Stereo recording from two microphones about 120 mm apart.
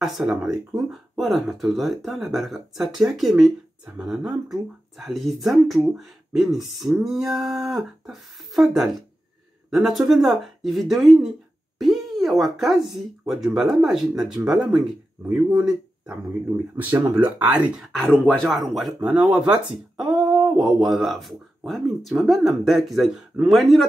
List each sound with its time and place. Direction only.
0.0 s speech: 5° right (ahead or behind)
17.9 s speech: 10° left (ahead or behind)